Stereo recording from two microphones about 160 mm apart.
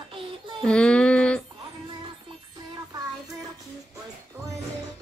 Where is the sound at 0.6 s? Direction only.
5° left (ahead or behind).